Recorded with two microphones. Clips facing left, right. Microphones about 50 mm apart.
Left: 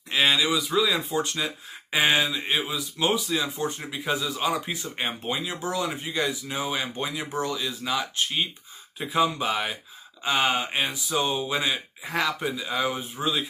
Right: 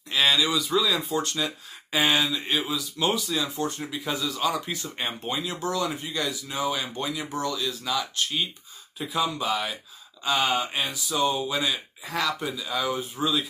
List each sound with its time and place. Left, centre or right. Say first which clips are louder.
0.1 s speech: even; centre